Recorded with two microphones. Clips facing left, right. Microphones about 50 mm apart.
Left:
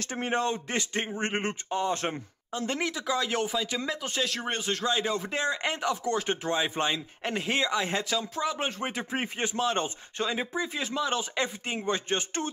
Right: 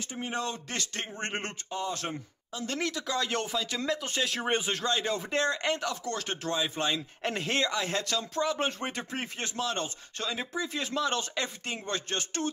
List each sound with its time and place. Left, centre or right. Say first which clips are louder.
0.2 s speech: left 5 dB; left; by 1.6 s centre
1.7 s speech: left 4 dB; left
2.8 s speech: even; centre
4.8 s speech: left 2 dB; centre; by 6.9 s left
6.9 s speech: left 1 dB; centre
9.1 s speech: left 5 dB; centre
10.7 s speech: left 1 dB; centre
11.3 s speech: left 3 dB; centre